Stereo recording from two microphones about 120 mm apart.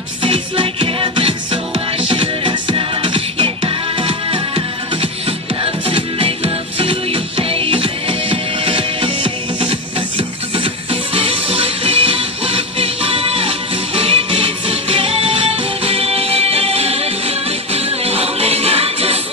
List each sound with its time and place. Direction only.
0.2 s music: 45° right (ahead or behind)